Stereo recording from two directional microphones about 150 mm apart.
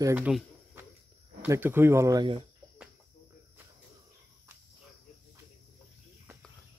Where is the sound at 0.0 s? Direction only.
15° right (ahead or behind).